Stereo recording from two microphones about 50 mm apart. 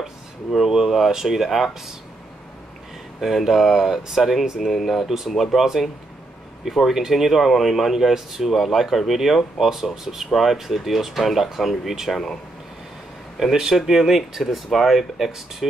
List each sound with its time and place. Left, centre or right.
0.0 s speech: centre
3.2 s speech: centre
13.4 s speech: centre